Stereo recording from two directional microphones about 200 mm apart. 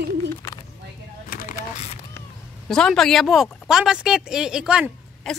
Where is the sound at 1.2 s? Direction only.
40° left (ahead or behind).